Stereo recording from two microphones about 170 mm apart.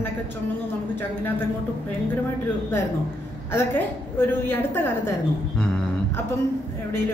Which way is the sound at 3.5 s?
10° left (ahead or behind).